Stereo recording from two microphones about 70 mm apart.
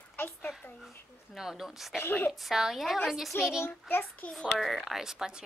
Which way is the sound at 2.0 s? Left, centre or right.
Left.